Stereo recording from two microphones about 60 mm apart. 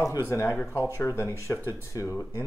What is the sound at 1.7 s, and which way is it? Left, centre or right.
Speech, left.